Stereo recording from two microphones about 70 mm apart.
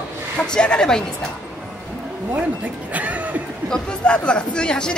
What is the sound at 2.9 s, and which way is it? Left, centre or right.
Speech, right.